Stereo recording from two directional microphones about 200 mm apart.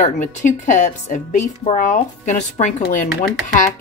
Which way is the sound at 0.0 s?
40° left (ahead or behind).